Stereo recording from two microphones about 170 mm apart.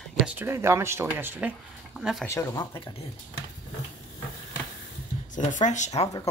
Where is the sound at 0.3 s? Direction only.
15° right (ahead or behind).